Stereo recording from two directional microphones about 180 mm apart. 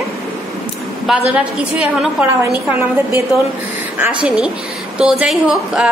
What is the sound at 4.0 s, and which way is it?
A woman's voice, 5° right (ahead or behind).